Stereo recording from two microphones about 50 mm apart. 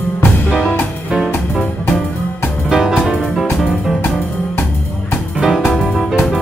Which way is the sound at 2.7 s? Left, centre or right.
Centre.